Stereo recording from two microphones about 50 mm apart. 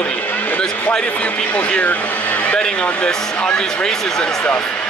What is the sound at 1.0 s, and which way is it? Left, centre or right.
Speech, left.